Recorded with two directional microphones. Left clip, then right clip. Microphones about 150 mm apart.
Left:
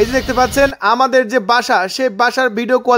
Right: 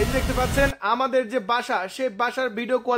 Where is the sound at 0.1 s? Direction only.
35° left (ahead or behind).